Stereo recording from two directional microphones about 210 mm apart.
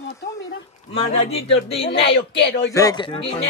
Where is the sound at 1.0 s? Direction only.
30° left (ahead or behind).